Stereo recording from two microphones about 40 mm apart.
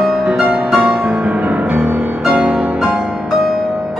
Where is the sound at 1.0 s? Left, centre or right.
Right.